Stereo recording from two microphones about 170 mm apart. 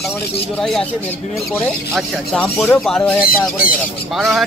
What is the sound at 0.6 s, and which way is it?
Speech, 5° left (ahead or behind).